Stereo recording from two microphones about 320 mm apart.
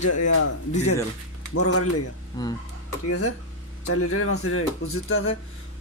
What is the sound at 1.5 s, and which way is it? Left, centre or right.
Speech, left.